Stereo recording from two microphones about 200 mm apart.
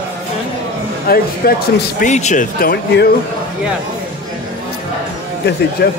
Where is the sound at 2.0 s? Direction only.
35° left (ahead or behind); by 3.1 s 50° left (ahead or behind).